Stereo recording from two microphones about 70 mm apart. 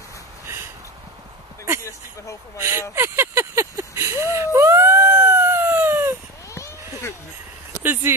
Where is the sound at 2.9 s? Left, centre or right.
Right.